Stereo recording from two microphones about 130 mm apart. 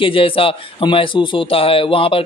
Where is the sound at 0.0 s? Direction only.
45° left (ahead or behind).